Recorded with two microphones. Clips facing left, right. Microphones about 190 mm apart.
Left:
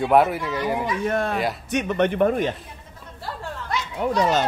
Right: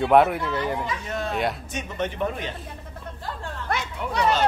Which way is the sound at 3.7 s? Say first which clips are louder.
Right 1 dB; 55° right (ahead or behind).